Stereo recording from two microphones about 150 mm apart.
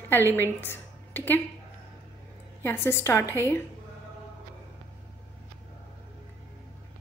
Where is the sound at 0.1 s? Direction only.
15° left (ahead or behind).